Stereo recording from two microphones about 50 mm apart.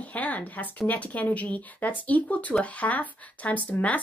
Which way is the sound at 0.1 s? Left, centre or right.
Left.